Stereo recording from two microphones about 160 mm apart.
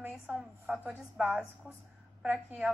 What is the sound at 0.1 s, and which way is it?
A woman's voice, 5° right (ahead or behind).